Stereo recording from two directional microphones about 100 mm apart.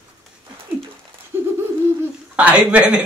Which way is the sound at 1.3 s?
25° right (ahead or behind).